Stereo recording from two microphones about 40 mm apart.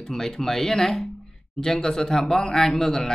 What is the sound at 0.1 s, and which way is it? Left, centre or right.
Speech, centre.